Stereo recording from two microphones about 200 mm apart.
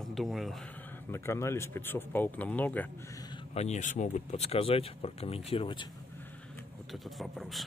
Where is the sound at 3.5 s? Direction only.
35° left (ahead or behind).